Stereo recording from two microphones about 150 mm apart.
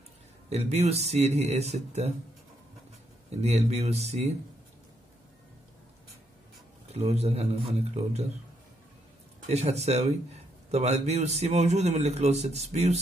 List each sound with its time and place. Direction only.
0.5 s a man's voice: 45° right (ahead or behind)
3.3 s a man's voice: 45° right (ahead or behind)
6.9 s a man's voice: 45° right (ahead or behind)
9.5 s a man's voice: 45° right (ahead or behind)